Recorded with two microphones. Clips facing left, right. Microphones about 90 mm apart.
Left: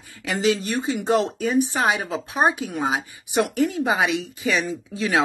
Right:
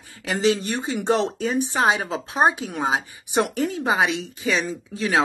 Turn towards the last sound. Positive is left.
turn(degrees=-35)  # may be behind; listen again after turning